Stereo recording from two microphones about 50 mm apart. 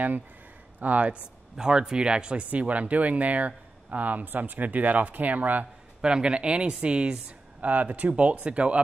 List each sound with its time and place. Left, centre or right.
0.7 s a man's voice: right
1.6 s speech: centre; by 5.7 s right
5.9 s a man's voice: centre
7.2 s a man's voice: right